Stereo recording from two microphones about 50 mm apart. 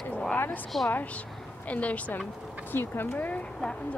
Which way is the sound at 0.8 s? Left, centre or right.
Left.